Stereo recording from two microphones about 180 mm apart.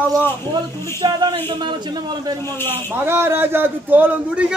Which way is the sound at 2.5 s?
10° left (ahead or behind).